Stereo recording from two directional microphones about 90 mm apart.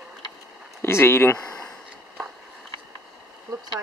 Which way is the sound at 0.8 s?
25° left (ahead or behind).